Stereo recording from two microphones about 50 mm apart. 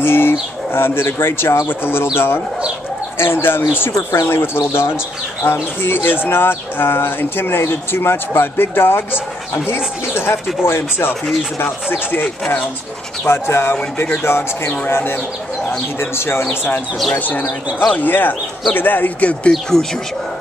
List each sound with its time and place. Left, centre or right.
0.0 s speech: left
13.2 s speech: left
17.1 s speech: left
19.5 s speech: centre